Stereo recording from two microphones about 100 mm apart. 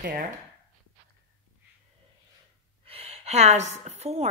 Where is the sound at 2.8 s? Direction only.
85° right.